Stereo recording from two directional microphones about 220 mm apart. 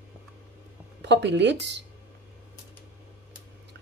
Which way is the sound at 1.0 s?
50° right (ahead or behind).